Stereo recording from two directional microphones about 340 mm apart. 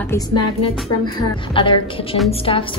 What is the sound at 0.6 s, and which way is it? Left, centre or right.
Speech, centre.